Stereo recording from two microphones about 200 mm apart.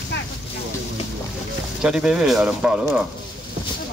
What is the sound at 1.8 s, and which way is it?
Speech, 5° right (ahead or behind).